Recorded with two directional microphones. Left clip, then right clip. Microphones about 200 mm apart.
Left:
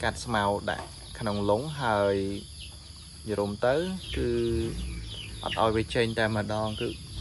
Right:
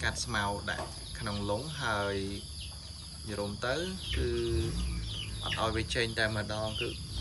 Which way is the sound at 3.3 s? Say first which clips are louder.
Left 8 dB; 15° left (ahead or behind).